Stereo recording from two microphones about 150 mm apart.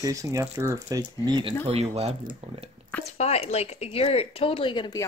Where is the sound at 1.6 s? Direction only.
40° right (ahead or behind).